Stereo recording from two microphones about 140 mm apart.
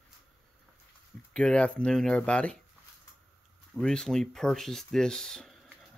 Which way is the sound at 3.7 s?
5° left (ahead or behind).